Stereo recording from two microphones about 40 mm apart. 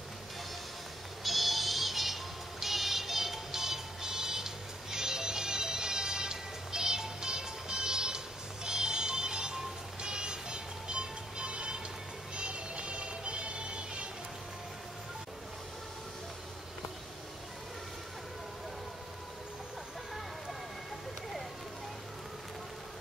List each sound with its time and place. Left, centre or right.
1.2 s synthetic singing: centre
2.6 s music: centre; by 14.0 s right